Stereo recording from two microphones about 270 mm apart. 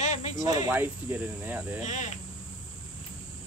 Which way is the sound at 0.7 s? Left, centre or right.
Centre.